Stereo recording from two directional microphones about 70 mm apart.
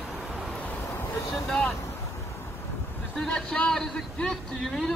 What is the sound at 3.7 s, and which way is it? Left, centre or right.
A man's voice, centre.